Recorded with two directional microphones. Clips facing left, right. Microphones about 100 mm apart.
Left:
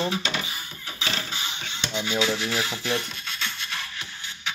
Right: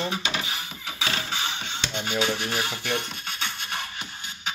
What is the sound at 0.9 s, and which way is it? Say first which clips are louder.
Music: right 1 dB; 90° right.